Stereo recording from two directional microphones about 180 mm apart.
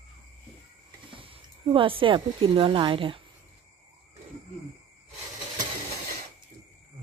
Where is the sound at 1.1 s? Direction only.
30° right (ahead or behind).